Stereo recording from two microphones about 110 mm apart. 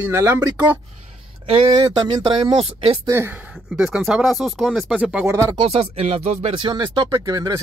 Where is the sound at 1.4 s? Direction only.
55° right (ahead or behind).